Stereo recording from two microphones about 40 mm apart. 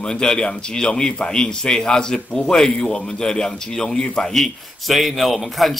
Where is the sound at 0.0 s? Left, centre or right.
Centre.